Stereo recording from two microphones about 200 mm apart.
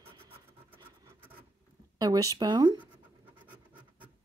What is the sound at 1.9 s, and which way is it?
Speech, 20° right (ahead or behind).